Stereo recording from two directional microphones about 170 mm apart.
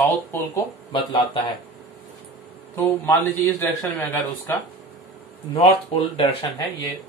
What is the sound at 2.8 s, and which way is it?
A man's voice, 10° left (ahead or behind).